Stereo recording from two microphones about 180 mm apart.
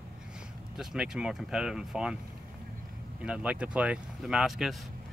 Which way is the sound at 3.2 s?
5° right (ahead or behind).